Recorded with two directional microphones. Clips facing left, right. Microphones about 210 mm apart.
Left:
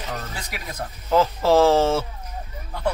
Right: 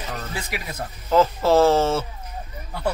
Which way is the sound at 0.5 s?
5° right (ahead or behind).